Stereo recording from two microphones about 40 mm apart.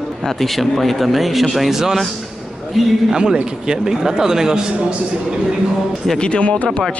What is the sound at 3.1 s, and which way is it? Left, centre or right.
A man's voice, right.